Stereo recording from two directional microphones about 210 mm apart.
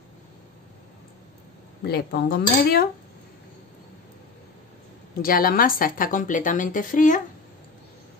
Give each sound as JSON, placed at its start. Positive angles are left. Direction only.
{"t": 1.9, "sound": "speech", "side_deg": 45}
{"t": 5.2, "sound": "a woman's voice", "side_deg": 45}